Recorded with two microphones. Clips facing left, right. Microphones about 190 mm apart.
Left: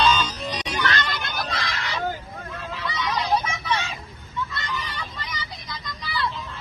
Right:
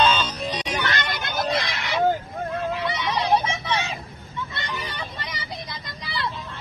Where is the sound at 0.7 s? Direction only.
20° right (ahead or behind).